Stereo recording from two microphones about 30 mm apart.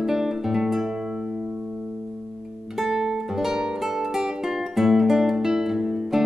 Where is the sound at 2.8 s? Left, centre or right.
Centre.